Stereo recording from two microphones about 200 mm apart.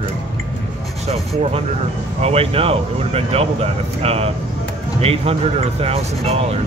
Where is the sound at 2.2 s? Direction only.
30° right (ahead or behind).